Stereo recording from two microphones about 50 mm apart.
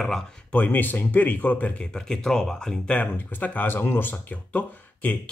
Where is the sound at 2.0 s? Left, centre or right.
Centre.